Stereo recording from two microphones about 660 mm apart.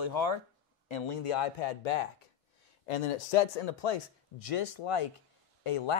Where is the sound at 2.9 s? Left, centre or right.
Left.